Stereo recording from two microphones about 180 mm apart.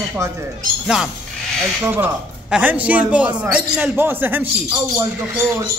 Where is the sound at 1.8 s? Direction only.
10° right (ahead or behind).